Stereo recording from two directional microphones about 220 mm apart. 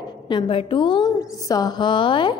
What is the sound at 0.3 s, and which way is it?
A woman's voice, 25° left (ahead or behind).